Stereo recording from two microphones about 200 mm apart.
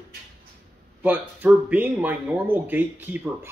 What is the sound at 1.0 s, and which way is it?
A man's voice, 10° right (ahead or behind).